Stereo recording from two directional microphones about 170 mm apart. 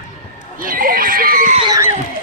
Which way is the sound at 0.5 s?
55° right (ahead or behind).